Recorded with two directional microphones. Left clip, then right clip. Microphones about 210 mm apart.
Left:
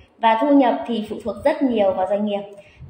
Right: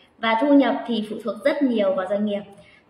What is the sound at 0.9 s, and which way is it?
Speech, 20° left (ahead or behind).